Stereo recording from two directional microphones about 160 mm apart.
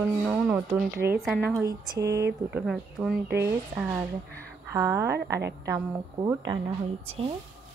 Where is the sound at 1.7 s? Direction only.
20° right (ahead or behind).